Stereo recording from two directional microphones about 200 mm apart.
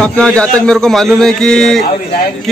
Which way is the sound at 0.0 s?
5° left (ahead or behind).